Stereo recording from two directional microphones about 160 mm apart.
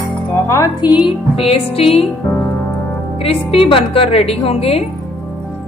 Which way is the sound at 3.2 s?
35° left (ahead or behind).